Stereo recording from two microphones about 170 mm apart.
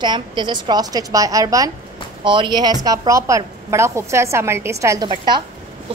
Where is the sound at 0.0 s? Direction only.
25° right (ahead or behind).